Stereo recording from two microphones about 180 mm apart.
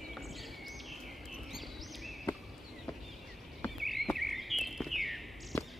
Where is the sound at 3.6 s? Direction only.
Centre (ahead or behind).